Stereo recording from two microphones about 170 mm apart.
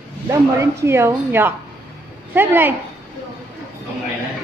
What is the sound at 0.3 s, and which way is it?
Speech, 15° right (ahead or behind).